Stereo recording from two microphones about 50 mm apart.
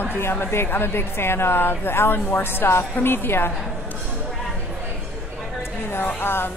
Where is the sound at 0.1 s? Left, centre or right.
Left.